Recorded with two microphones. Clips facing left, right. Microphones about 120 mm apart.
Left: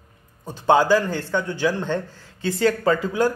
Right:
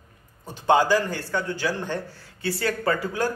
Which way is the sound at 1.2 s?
20° left (ahead or behind).